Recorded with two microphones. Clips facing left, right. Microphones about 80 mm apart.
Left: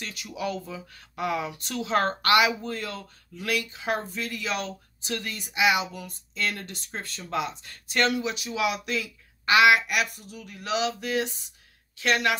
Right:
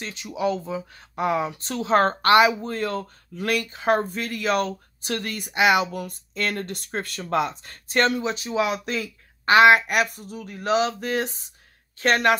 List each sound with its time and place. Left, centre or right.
0.0 s speech: right